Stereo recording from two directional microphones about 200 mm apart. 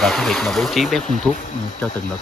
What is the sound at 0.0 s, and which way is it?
Speech, centre (ahead or behind).